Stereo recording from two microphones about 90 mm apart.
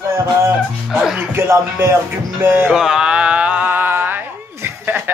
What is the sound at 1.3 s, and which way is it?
Speech, 30° right (ahead or behind).